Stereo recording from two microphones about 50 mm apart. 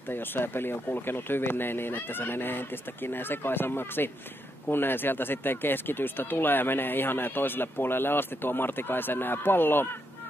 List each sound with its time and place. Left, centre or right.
0.1 s speech: left